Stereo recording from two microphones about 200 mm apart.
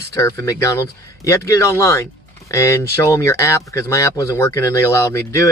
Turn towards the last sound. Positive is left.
turn(degrees=15)  # may be behind; listen again after turning